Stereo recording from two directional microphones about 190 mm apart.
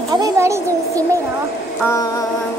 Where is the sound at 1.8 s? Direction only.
15° left (ahead or behind).